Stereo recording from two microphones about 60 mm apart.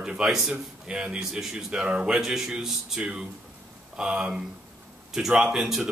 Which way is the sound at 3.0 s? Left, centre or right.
Centre.